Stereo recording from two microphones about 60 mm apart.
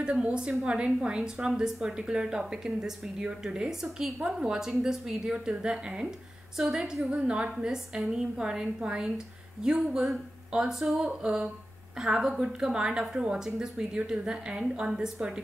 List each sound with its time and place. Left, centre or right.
0.0 s a woman's voice: centre